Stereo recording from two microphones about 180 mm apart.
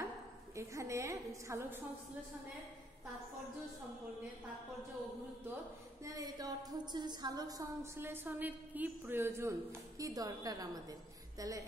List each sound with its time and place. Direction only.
0.6 s a woman's voice: 15° right (ahead or behind)
6.0 s a woman's voice: 20° right (ahead or behind)